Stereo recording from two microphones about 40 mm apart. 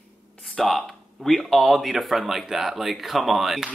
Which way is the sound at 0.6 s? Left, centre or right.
Centre.